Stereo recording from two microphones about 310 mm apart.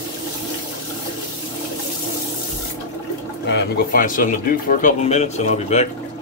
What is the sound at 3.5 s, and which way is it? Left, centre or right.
Speech, left.